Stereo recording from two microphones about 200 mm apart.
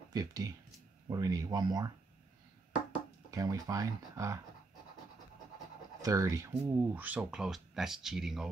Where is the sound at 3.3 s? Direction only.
15° right (ahead or behind).